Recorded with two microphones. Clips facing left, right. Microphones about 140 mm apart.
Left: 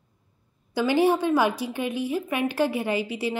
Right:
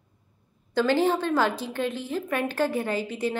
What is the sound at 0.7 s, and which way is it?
Speech, 10° left (ahead or behind).